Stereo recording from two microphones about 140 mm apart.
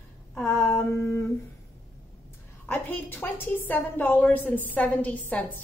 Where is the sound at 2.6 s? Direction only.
15° left (ahead or behind).